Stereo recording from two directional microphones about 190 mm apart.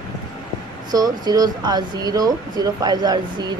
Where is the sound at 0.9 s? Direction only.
20° right (ahead or behind).